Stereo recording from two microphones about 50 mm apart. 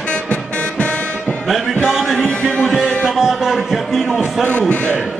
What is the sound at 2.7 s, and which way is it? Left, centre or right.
Music, centre.